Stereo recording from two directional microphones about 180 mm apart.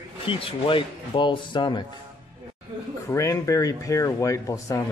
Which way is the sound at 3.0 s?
15° left (ahead or behind).